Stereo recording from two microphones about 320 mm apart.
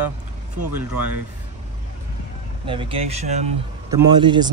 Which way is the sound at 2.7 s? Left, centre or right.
Centre.